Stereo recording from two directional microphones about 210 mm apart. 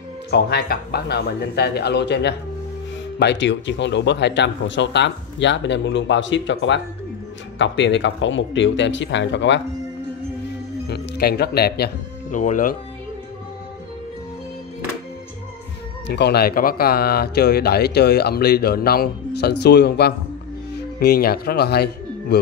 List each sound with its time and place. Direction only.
0.3 s speech: 50° left (ahead or behind)
10.9 s speech: 50° left (ahead or behind)
16.1 s speech: 50° left (ahead or behind)